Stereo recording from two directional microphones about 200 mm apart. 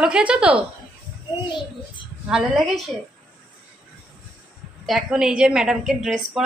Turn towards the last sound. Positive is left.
turn(degrees=0)  # may be behind; listen again after turning